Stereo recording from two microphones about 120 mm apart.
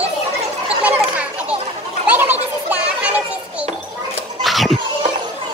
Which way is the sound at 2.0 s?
15° right (ahead or behind).